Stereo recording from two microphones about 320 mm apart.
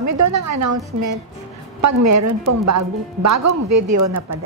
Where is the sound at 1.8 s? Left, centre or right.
Right.